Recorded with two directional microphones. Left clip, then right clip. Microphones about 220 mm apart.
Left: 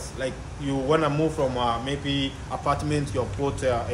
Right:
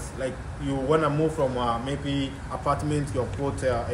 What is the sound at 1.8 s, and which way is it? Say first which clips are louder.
Speech: left 2 dB; 40° left (ahead or behind).